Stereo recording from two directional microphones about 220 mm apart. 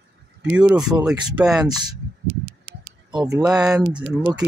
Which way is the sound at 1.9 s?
20° right (ahead or behind).